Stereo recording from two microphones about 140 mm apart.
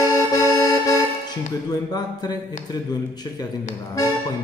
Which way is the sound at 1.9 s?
30° left (ahead or behind).